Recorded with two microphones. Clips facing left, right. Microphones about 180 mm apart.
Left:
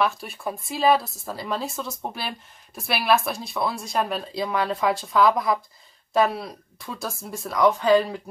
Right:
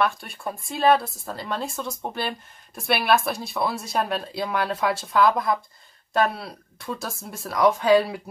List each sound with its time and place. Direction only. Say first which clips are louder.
0.0 s speech: even; centre (ahead or behind)